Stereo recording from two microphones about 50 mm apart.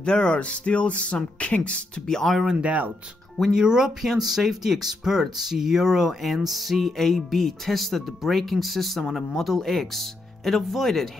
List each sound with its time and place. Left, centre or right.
0.0 s speech: centre
2.0 s speech: centre
2.5 s speech: right
3.5 s speech: centre
6.2 s music: centre